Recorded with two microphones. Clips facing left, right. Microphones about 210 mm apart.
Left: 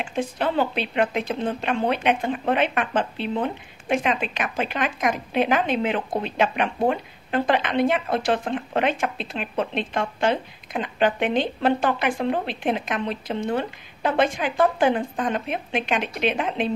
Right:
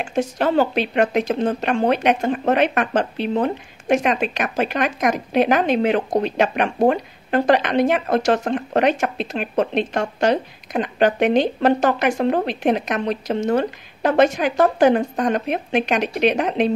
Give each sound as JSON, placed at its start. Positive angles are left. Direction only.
{"t": 0.0, "sound": "speech", "side_deg": -45}